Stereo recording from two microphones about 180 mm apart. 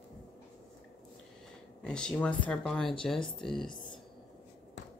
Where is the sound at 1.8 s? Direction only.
5° left (ahead or behind).